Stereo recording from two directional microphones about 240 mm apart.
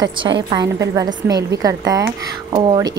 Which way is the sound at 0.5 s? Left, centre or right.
Centre.